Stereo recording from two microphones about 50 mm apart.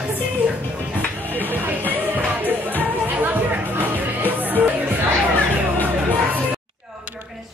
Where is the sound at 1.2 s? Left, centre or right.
Left.